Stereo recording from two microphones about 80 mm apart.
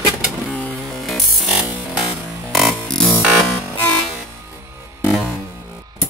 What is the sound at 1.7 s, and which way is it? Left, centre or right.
Music, centre.